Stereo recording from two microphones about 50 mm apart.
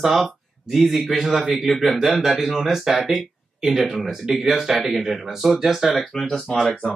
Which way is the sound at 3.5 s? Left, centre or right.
Centre.